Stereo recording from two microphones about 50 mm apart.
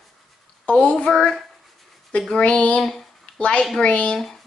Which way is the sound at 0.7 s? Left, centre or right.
Left.